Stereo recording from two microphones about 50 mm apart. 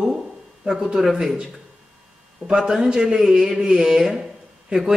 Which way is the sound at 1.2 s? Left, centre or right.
Centre.